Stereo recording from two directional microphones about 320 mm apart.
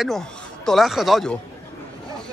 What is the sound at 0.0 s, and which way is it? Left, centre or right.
Speech, centre.